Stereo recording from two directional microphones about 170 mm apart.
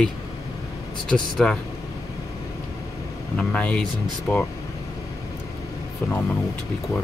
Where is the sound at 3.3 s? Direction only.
5° left (ahead or behind).